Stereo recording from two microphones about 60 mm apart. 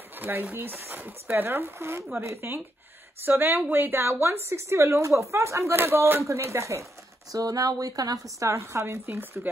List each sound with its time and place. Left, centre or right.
0.2 s speech: right
7.3 s speech: right
8.5 s speech: right
9.0 s speech: right